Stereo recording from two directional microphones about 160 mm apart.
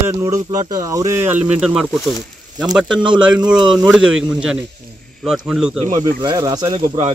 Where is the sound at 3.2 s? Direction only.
5° right (ahead or behind).